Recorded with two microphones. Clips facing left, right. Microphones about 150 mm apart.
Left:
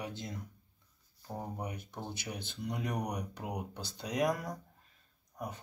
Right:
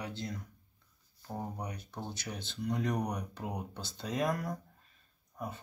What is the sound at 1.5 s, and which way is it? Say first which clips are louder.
Speech: even; 20° left (ahead or behind).